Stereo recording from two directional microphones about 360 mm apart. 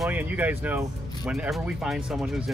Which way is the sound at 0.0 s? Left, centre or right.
Centre.